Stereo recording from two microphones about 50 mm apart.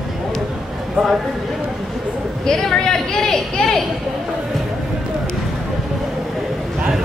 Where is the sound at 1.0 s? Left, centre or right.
Right.